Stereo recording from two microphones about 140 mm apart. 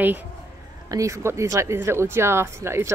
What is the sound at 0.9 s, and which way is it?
Speech, 20° right (ahead or behind).